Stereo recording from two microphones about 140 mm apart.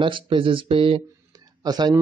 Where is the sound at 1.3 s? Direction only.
30° right (ahead or behind).